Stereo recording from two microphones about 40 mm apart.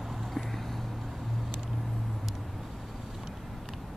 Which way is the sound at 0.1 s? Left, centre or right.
Centre.